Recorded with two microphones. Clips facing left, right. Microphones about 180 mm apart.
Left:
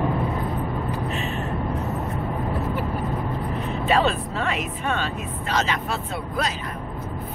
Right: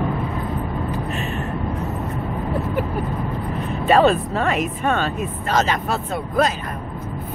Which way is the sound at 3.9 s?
45° right (ahead or behind).